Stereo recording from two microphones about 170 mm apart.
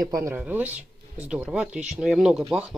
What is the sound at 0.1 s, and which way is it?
Speech, 15° right (ahead or behind).